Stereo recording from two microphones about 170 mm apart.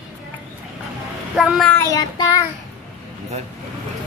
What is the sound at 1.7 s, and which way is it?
Child singing, 15° left (ahead or behind).